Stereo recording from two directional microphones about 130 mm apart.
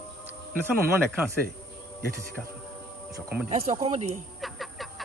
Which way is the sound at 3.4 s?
55° right (ahead or behind).